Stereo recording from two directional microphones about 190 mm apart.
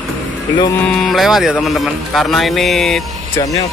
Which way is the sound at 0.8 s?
Centre (ahead or behind).